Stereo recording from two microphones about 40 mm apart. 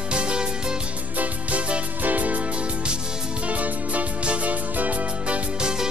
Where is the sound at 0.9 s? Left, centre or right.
Right.